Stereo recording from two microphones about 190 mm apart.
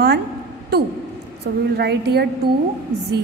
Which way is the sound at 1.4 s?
60° right (ahead or behind).